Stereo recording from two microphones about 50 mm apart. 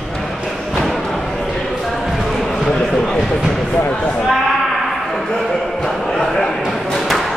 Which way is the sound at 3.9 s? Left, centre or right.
Left.